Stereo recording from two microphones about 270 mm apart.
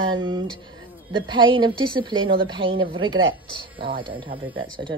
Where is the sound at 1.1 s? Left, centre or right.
Centre.